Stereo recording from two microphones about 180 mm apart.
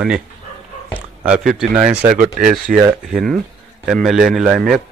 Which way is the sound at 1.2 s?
5° right (ahead or behind).